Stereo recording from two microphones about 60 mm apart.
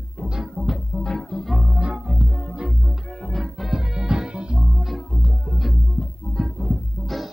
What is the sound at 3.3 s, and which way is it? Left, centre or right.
Music, centre.